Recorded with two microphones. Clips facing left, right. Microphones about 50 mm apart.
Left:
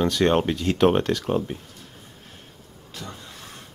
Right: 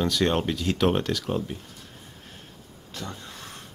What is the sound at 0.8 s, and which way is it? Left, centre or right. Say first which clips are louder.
Speech: left 5 dB; centre.